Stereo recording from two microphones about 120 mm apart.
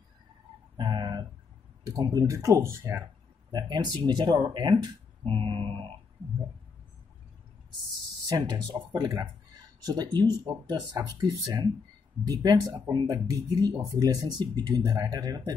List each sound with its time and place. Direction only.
0.7 s fowl: 35° right (ahead or behind)
1.9 s speech: 30° right (ahead or behind)
3.5 s speech: 35° right (ahead or behind)
8.3 s speech: 35° right (ahead or behind)